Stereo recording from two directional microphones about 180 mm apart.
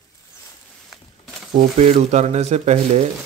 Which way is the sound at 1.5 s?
40° right (ahead or behind).